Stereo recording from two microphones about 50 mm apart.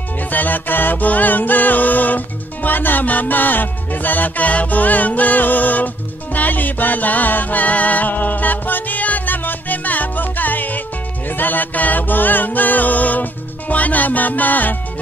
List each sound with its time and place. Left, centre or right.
0.3 s music: left